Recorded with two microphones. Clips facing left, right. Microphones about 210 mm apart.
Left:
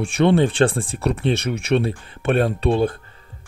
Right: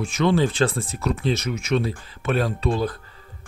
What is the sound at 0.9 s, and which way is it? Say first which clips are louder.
Speech: left 3 dB; 60° left (ahead or behind).